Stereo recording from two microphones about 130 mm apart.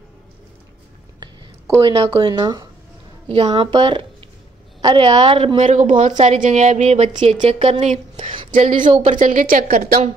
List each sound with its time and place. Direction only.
1.8 s a woman's voice: 45° right (ahead or behind)
2.1 s speech: 30° right (ahead or behind)
3.3 s a woman's voice: 50° right (ahead or behind)
5.6 s a woman's voice: 75° right (ahead or behind); by 8.0 s 55° right (ahead or behind)
8.2 s a sound: 45° right (ahead or behind)
8.5 s a woman's voice: 90° right